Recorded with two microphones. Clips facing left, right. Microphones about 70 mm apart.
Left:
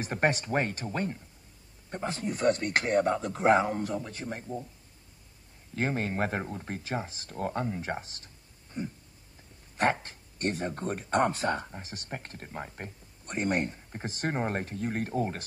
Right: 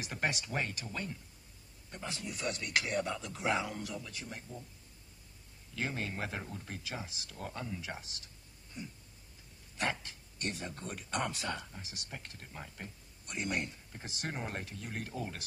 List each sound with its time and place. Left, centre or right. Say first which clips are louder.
0.0 s speech: left 9 dB; left
5.8 s speech: left 8 dB; left